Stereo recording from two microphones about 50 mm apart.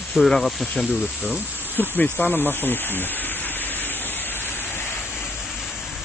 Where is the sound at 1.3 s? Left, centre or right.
Left.